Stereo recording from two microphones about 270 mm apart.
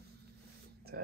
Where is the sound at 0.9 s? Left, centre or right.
Right.